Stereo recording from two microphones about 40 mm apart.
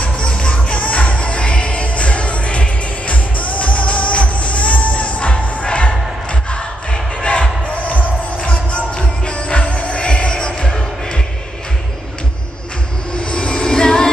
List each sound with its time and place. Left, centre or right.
0.0 s music: left
7.2 s music: left
8.5 s music: left
13.3 s music: left